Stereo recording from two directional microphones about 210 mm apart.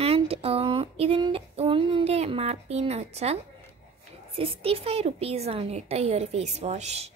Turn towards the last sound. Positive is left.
turn(degrees=-30)  # may be behind; listen again after turning